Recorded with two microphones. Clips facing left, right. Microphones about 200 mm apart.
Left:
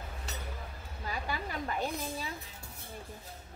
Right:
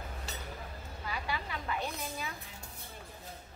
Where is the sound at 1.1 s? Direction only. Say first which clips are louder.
Left 2 dB; 40° left (ahead or behind).